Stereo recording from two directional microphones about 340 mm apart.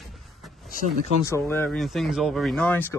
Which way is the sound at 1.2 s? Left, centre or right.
Centre.